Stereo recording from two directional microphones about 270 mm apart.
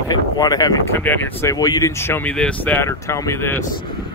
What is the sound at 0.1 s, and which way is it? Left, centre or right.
Speech, centre.